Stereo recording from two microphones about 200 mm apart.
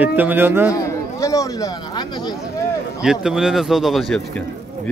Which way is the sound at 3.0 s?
5° right (ahead or behind).